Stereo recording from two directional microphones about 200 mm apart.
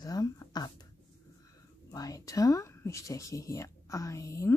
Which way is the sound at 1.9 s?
15° left (ahead or behind).